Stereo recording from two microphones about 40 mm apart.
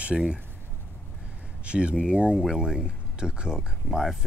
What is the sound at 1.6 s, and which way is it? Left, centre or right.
Speech, right.